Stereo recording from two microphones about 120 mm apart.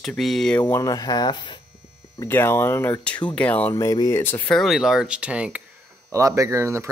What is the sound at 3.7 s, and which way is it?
Speech, 30° left (ahead or behind).